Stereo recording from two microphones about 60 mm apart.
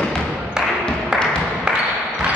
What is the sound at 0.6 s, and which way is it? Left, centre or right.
Music, centre.